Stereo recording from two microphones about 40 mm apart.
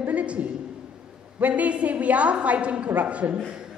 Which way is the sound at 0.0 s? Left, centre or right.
Right.